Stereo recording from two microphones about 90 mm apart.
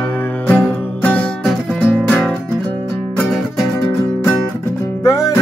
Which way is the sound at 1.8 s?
15° left (ahead or behind).